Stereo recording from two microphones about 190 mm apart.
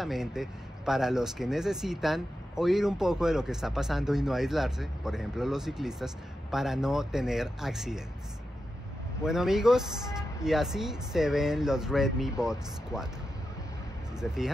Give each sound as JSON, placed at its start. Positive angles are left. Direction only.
{"t": 0.0, "sound": "speech", "side_deg": 0}
{"t": 9.2, "sound": "speech", "side_deg": -5}
{"t": 14.2, "sound": "speech", "side_deg": 0}